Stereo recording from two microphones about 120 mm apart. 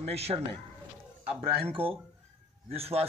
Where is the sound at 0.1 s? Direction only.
60° right (ahead or behind).